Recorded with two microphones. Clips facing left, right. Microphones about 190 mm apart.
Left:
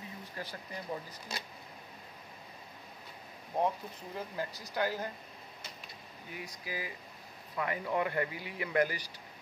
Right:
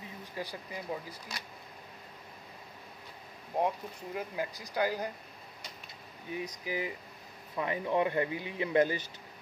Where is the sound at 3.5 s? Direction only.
15° right (ahead or behind).